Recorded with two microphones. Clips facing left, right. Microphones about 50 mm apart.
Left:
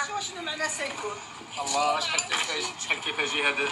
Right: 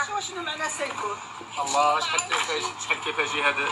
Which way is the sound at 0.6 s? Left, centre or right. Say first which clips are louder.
Right 1 dB; centre.